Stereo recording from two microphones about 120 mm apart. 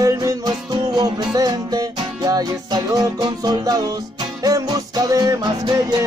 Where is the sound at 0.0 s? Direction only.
30° right (ahead or behind).